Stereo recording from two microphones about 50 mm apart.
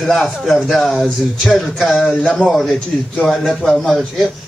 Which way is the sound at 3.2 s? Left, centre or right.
Centre.